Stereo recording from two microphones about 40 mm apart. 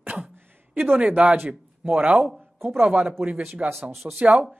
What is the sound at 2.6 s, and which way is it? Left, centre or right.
Speech, right.